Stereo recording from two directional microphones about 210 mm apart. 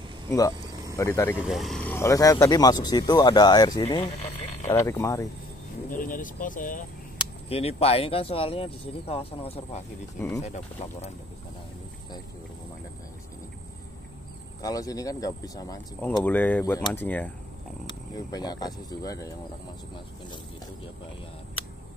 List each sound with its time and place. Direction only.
0.3 s speech: 15° left (ahead or behind)
1.4 s speech: centre (ahead or behind); by 4.6 s 30° left (ahead or behind)
4.6 s speech: 15° left (ahead or behind)
5.9 s speech: 40° left (ahead or behind)
7.4 s speech: 30° left (ahead or behind)
14.6 s speech: 15° left (ahead or behind)
17.8 s speech: 20° left (ahead or behind)